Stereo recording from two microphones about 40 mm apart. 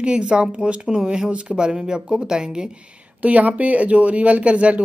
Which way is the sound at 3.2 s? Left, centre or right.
Right.